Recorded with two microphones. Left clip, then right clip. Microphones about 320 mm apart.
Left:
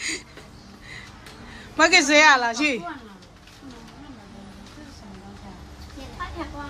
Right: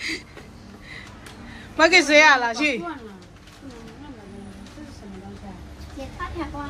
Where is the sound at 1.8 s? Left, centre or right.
Centre.